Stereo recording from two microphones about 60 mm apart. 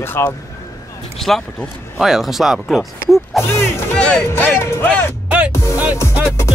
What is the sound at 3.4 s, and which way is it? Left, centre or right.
Speech, left.